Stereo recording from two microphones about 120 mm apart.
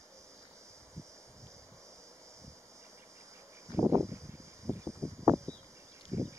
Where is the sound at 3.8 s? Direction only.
25° right (ahead or behind).